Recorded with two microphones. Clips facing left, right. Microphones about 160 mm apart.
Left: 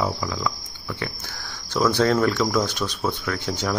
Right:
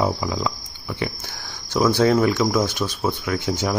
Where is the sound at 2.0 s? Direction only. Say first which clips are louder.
Right 2 dB; 10° right (ahead or behind).